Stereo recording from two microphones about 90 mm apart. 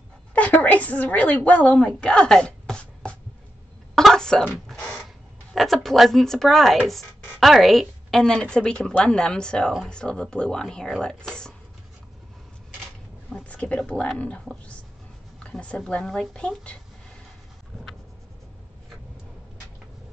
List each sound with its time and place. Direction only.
0.3 s speech: 15° left (ahead or behind)
3.9 s cough: 5° left (ahead or behind)
4.7 s a sound: centre (ahead or behind)
5.5 s a woman's voice: centre (ahead or behind)
13.3 s a woman's voice: 15° left (ahead or behind)